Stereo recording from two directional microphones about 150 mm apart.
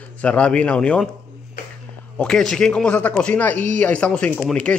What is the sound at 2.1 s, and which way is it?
Speech, 5° left (ahead or behind).